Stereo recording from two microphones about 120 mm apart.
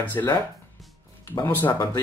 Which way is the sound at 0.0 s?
15° left (ahead or behind).